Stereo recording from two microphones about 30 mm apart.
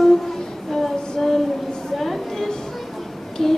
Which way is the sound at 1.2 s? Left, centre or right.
Centre.